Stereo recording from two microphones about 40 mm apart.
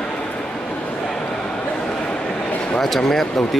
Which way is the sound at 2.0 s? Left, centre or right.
Left.